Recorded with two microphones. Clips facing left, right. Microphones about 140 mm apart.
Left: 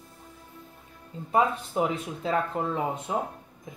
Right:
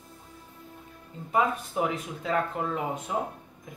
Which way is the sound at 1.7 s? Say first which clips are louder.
Left 2 dB; 25° left (ahead or behind).